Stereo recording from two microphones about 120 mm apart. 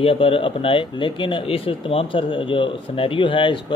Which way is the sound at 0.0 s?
50° left (ahead or behind).